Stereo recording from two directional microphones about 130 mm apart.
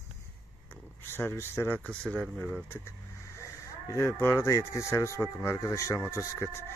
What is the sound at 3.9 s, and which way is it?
Speech, 25° left (ahead or behind).